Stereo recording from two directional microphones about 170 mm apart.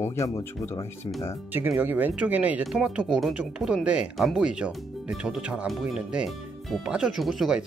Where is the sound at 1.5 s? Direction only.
10° right (ahead or behind).